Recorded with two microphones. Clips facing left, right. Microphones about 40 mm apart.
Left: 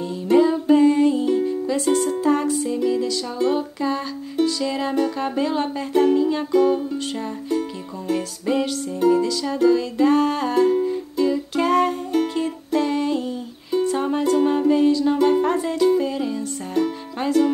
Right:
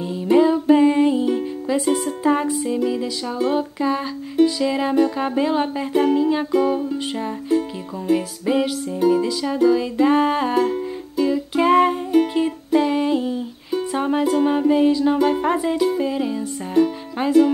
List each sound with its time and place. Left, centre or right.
0.3 s music: centre